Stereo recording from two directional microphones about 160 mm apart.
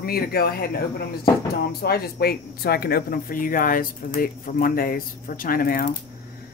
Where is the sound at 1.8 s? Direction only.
75° left (ahead or behind).